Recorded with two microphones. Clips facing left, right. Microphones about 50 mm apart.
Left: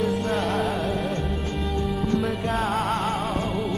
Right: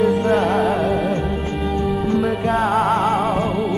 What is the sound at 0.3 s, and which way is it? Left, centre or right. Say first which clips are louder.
Music: right 8 dB; centre.